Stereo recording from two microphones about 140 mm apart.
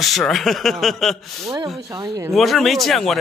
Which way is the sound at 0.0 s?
Centre (ahead or behind).